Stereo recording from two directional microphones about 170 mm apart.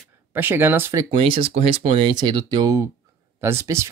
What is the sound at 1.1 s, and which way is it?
Speech, 30° right (ahead or behind).